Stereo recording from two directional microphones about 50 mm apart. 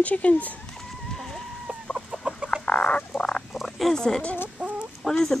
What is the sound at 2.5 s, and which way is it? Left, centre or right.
Frog, left.